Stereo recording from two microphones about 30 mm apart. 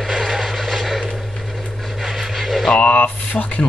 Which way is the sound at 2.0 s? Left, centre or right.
Centre.